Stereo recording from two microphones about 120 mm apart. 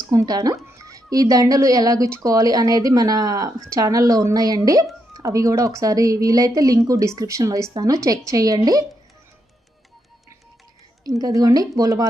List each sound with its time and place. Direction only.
0.0 s a woman's voice: 30° right (ahead or behind)
11.1 s a woman's voice: 30° right (ahead or behind)